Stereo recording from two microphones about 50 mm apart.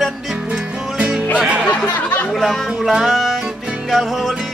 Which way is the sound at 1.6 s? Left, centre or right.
Left.